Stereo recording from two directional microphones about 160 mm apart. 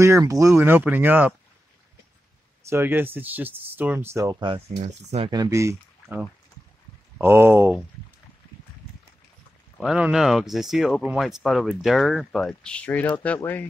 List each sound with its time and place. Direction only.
0.0 s speech: 20° right (ahead or behind)
2.7 s speech: 15° right (ahead or behind)
4.7 s speech: 40° right (ahead or behind)
5.3 s speech: 20° right (ahead or behind)
9.8 s speech: 5° right (ahead or behind); by 13.7 s 10° left (ahead or behind)